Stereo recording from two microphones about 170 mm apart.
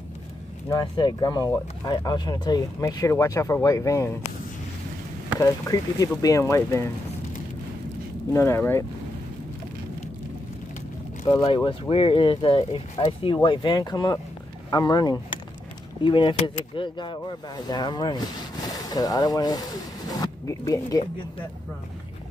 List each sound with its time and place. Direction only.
0.7 s speech: 25° left (ahead or behind)
5.4 s speech: 20° left (ahead or behind)
8.3 s speech: 15° left (ahead or behind)
11.3 s speech: 30° left (ahead or behind)